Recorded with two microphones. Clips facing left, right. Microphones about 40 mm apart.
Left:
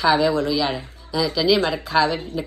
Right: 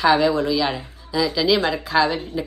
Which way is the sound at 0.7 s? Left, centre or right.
Right.